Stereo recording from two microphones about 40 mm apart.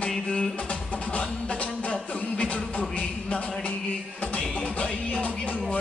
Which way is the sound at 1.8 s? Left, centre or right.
Left.